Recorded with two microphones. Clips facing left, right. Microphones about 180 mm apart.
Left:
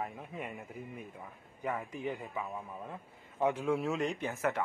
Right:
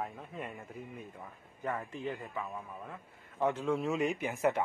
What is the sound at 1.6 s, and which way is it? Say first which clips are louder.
A man's voice: even; 10° left (ahead or behind).